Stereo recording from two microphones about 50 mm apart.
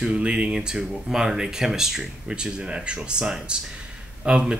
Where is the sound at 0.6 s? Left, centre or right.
Centre.